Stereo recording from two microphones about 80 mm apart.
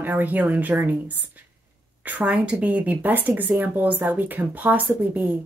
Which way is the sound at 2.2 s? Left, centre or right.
Centre.